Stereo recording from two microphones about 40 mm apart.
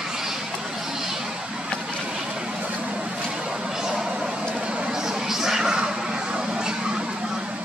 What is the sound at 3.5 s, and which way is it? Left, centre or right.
Vehicle, centre.